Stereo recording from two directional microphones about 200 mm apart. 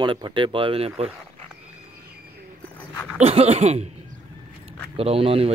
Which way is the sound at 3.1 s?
30° right (ahead or behind).